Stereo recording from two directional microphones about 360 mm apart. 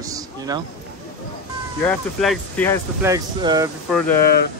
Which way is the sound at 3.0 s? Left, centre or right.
Centre.